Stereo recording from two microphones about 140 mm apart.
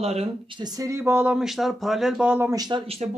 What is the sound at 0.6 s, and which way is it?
Speech, 25° right (ahead or behind).